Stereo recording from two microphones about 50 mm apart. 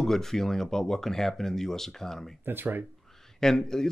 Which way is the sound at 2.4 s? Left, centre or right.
Right.